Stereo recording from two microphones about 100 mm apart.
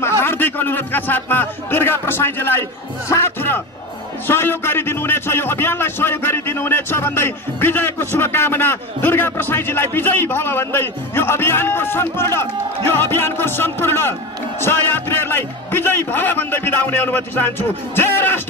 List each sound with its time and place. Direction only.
0.0 s a man's voice: 25° left (ahead or behind)